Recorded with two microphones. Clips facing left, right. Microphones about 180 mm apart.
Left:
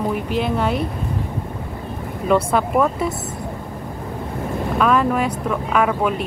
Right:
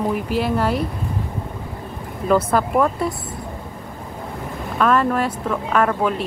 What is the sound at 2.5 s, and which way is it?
Speech, centre (ahead or behind).